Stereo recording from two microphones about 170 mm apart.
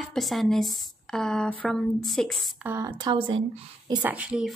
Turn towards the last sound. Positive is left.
turn(degrees=-5)  # may be behind; listen again after turning